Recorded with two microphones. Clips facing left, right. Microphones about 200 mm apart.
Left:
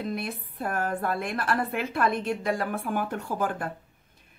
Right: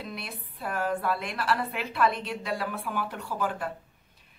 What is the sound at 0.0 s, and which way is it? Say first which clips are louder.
Speech: left 7 dB; 50° left (ahead or behind).